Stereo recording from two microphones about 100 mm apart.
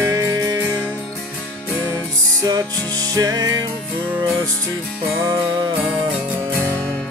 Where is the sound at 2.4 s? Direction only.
40° right (ahead or behind).